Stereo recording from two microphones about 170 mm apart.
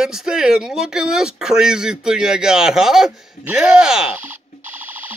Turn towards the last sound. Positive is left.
turn(degrees=-10)  # may be behind; listen again after turning